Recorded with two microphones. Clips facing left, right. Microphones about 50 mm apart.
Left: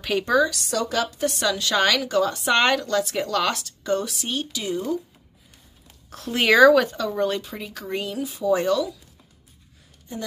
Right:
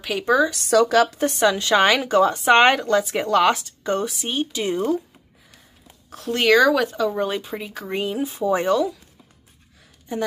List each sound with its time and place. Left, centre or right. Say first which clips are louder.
0.0 s a woman's voice: right 1 dB; centre
0.8 s a woman's voice: right 8 dB; right
1.2 s a woman's voice: right 4 dB; right
4.1 s a woman's voice: right 3 dB; centre
4.7 s a woman's voice: right 4 dB; right
6.0 s speech: right 2 dB; centre
7.1 s a woman's voice: right 1 dB; centre